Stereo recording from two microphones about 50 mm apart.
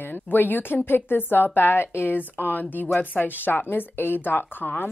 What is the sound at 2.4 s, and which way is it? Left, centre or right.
A woman's voice, left.